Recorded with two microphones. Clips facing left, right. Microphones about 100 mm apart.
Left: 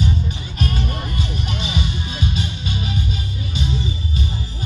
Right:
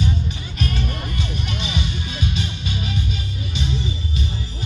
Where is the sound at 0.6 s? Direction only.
35° left (ahead or behind).